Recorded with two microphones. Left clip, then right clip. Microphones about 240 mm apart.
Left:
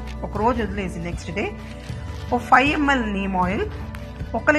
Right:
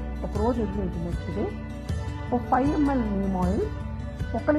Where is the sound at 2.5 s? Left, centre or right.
Left.